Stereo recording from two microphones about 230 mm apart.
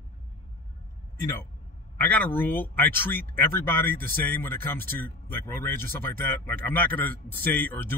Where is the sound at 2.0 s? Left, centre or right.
Centre.